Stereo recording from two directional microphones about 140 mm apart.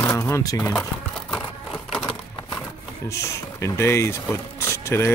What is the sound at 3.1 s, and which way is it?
Speech, 20° left (ahead or behind).